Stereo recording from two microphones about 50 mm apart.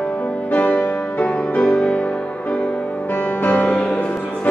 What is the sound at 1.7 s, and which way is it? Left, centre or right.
Music, centre.